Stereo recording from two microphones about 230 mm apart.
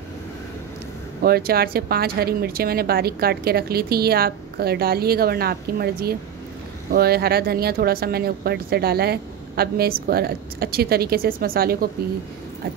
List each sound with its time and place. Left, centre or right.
1.2 s speech: right